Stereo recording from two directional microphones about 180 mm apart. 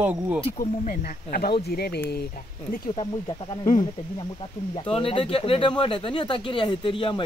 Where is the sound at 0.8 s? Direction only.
55° left (ahead or behind).